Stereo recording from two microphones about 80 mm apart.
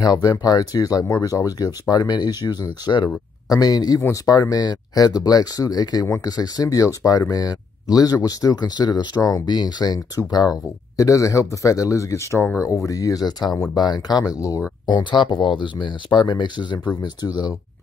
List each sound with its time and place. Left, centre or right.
0.0 s speech: left
11.0 s speech: left
14.9 s speech: left